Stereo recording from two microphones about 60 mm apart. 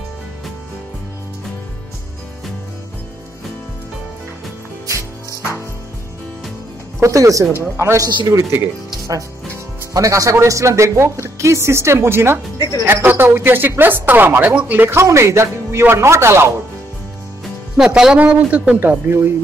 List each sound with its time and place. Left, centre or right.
4.8 s music: right
7.0 s speech: right
7.7 s a woman's voice: right
8.0 s speech: right
9.9 s speech: right
10.3 s a woman's voice: right
15.0 s a woman's voice: right
17.8 s speech: centre
18.8 s a woman's voice: right